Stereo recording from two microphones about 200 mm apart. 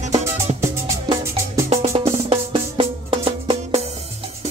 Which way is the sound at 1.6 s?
30° right (ahead or behind).